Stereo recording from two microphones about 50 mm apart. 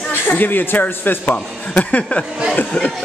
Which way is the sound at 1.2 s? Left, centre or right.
Left.